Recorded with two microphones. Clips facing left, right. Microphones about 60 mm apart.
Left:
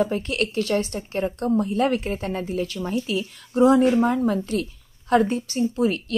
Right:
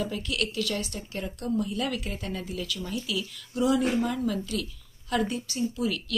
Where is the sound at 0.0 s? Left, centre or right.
Left.